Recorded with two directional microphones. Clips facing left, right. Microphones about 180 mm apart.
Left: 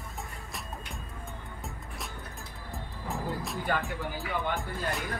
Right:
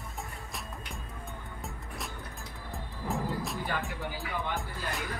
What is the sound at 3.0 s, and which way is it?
Speech, centre (ahead or behind).